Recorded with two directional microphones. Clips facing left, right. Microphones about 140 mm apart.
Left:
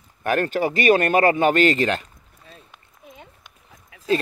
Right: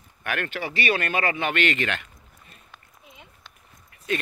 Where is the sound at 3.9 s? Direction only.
90° left.